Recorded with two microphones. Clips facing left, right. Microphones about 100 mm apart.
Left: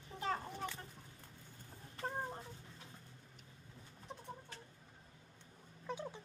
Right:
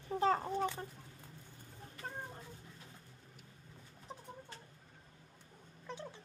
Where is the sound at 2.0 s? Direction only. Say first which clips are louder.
Left 4 dB; 30° left (ahead or behind).